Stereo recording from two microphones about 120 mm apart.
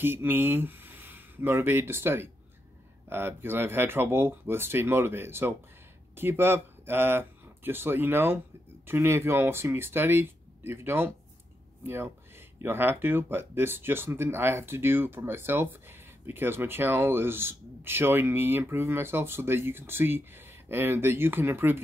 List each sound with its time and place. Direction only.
0.0 s speech: 15° right (ahead or behind)